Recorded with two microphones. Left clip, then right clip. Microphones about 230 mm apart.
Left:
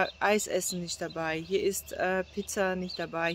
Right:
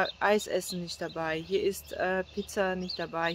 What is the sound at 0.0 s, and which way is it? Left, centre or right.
Speech, centre.